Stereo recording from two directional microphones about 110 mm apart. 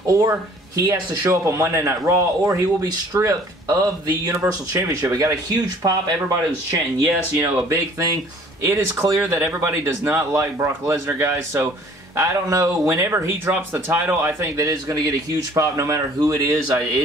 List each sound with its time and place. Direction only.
0.8 s speech: 30° right (ahead or behind)
9.3 s speech: 15° right (ahead or behind)